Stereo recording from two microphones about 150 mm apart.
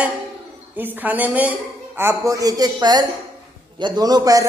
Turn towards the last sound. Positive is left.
turn(degrees=-25)  # may be behind; listen again after turning